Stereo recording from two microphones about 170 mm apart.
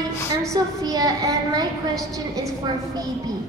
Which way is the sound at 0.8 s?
20° right (ahead or behind).